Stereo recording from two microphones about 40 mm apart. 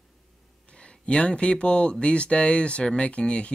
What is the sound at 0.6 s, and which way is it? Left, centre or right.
Speech, left.